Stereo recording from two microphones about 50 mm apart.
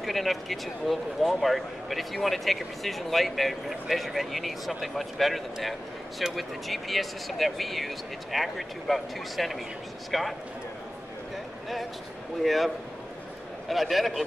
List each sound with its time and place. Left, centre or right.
0.0 s speech: centre
12.4 s speech: centre